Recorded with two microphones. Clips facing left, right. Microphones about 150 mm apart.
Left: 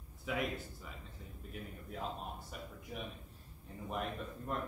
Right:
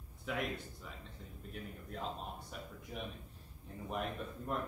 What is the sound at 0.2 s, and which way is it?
Speech, centre (ahead or behind).